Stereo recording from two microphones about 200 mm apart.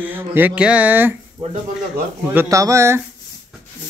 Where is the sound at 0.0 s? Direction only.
10° right (ahead or behind).